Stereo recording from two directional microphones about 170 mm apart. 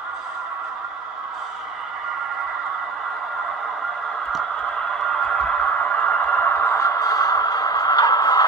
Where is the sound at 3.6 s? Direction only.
Centre (ahead or behind).